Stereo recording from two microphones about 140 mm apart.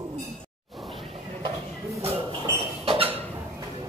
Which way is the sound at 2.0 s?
45° right (ahead or behind).